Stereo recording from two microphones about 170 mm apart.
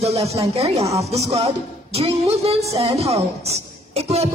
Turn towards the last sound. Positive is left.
turn(degrees=-40)  # may be behind; listen again after turning